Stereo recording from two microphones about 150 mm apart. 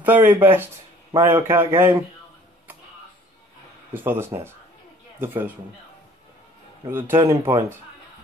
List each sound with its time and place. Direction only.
0.0 s speech: 10° right (ahead or behind)
3.9 s speech: 15° right (ahead or behind)
6.9 s speech: 15° right (ahead or behind)